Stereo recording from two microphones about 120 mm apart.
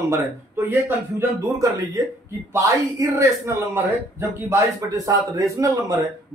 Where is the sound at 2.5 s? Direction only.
25° right (ahead or behind).